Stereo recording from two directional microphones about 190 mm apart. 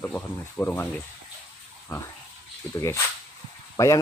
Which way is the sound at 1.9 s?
20° left (ahead or behind).